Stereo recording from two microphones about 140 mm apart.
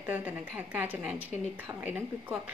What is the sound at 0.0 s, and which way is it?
Speech, 15° right (ahead or behind).